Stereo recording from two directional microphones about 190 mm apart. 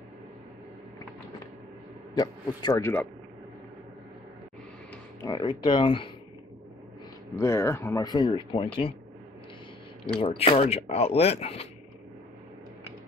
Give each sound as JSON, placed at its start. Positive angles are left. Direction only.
{"t": 2.1, "sound": "a man's voice", "side_deg": 20}
{"t": 5.2, "sound": "speech", "side_deg": 20}
{"t": 7.3, "sound": "speech", "side_deg": 15}
{"t": 10.0, "sound": "speech", "side_deg": 30}